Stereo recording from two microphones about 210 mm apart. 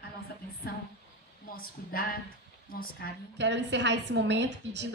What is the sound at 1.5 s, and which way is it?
A woman's voice, 45° left (ahead or behind).